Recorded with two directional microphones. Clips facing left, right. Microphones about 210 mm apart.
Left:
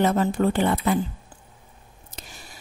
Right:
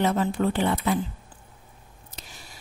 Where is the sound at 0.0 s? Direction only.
45° left (ahead or behind).